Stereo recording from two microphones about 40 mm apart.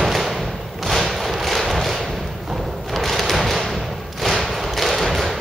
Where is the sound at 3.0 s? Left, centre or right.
Centre.